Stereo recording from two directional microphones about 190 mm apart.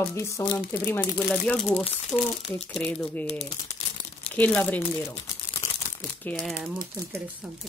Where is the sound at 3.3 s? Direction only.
30° left (ahead or behind).